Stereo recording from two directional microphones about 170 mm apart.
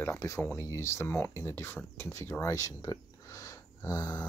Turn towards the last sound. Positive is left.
turn(degrees=20)  # may be behind; listen again after turning